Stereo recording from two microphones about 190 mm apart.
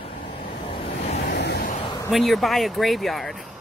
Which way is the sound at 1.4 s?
55° left (ahead or behind).